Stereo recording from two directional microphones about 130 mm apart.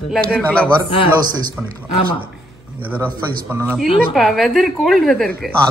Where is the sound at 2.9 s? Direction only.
15° right (ahead or behind).